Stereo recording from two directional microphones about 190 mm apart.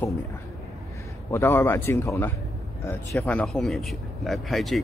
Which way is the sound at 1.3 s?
10° left (ahead or behind).